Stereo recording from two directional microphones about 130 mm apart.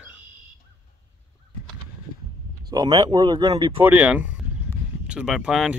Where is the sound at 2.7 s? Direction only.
30° right (ahead or behind).